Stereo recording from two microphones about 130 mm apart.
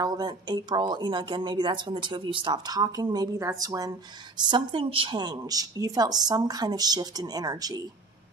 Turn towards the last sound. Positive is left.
turn(degrees=-30)  # may be behind; listen again after turning